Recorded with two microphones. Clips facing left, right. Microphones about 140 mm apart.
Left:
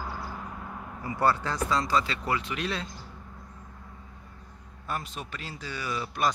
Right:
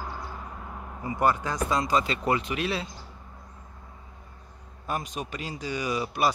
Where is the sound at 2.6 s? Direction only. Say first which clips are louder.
Right 3 dB; 5° right (ahead or behind).